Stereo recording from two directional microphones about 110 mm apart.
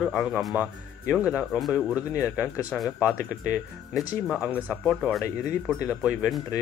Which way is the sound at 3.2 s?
25° left (ahead or behind).